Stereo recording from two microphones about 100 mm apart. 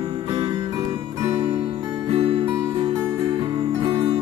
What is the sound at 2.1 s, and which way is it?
Music, 70° right (ahead or behind).